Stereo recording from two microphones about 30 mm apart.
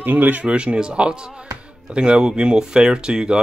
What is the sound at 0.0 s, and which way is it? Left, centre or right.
Speech, right.